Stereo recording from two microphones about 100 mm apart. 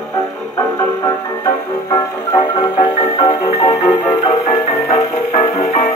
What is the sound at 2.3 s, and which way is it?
Marimba, 45° left (ahead or behind).